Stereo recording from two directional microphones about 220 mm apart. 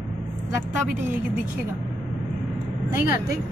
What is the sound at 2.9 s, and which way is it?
Speech, 10° right (ahead or behind).